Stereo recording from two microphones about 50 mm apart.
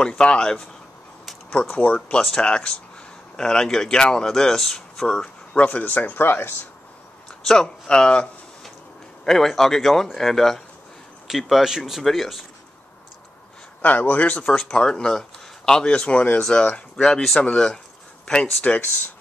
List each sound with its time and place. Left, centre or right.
0.0 s speech: centre
1.7 s speech: left
5.7 s speech: left
7.4 s speech: centre
9.2 s a man's voice: centre
13.8 s speech: left
14.5 s speech: centre
18.2 s a sound: centre
18.6 s speech: left